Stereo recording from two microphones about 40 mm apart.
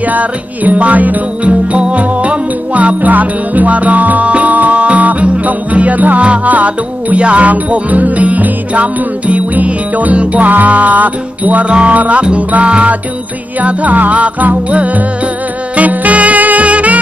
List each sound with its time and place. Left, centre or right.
0.0 s music: right
1.4 s music: right
7.2 s music: right
12.2 s music: right
13.6 s music: right